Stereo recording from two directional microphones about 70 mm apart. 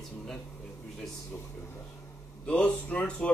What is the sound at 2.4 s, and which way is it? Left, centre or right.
Speech, centre.